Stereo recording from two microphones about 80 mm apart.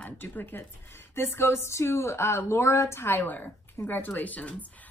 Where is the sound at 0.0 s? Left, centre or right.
Left.